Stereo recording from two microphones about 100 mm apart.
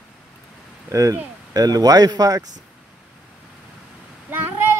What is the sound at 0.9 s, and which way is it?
Speech, 35° right (ahead or behind).